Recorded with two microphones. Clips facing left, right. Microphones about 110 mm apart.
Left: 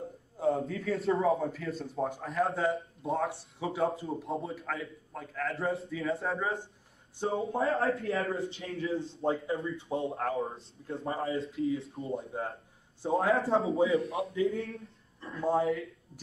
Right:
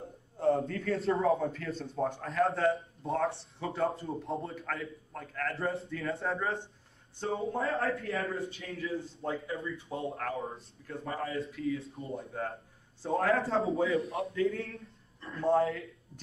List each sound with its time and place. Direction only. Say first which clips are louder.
0.4 s a man's voice: right 1 dB; centre (ahead or behind)
7.2 s a man's voice: left 2 dB; 30° left (ahead or behind)
13.7 s a man's voice: left 2 dB; 25° left (ahead or behind)
15.1 s speech: right 2 dB; 5° left (ahead or behind)